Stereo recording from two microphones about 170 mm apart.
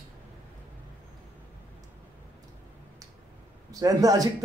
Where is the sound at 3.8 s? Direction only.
20° right (ahead or behind).